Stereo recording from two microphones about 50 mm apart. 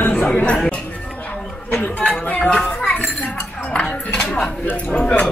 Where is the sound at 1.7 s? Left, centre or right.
Left.